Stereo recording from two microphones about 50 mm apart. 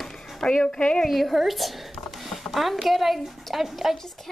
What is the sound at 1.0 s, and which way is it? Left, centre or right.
Speech, centre.